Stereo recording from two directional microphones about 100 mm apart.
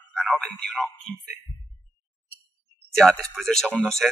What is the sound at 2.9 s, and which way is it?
Speech, 5° left (ahead or behind).